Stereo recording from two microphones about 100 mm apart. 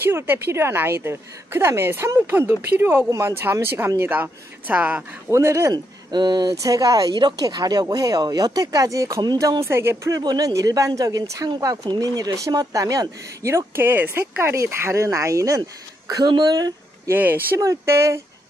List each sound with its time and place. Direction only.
0.0 s a woman's voice: 25° right (ahead or behind)
5.3 s a woman's voice: 30° right (ahead or behind)
6.1 s a woman's voice: 45° right (ahead or behind); by 10.1 s 25° right (ahead or behind)
10.1 s a woman's voice: 40° right (ahead or behind)
17.1 s a woman's voice: 20° right (ahead or behind)
17.6 s a woman's voice: 30° right (ahead or behind)